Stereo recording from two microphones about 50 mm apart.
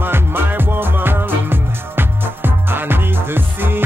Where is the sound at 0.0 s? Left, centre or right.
Right.